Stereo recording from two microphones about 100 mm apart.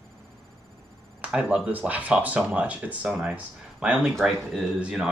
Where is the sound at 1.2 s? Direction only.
10° right (ahead or behind).